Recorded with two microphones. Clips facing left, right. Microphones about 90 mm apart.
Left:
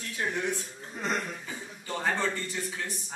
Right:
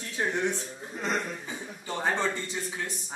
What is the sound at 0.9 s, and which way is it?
Speech, centre (ahead or behind).